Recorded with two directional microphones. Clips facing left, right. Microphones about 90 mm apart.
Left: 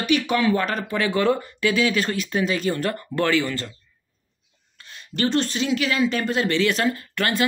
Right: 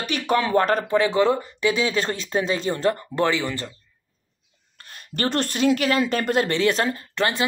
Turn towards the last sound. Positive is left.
turn(degrees=-20)  # may be behind; listen again after turning